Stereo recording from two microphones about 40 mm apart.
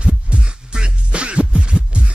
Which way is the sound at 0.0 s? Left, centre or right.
Right.